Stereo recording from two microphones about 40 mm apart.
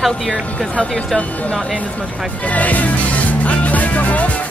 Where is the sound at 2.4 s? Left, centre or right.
Left.